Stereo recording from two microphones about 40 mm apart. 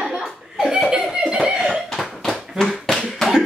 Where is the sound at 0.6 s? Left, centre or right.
Centre.